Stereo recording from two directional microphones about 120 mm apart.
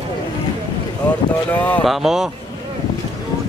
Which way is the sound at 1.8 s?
Centre (ahead or behind).